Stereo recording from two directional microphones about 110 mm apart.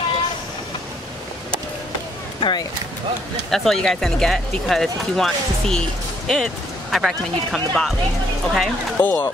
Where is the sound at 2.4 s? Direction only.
45° left (ahead or behind).